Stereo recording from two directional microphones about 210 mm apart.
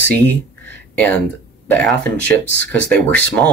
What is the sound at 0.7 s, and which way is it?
Speech, 5° left (ahead or behind).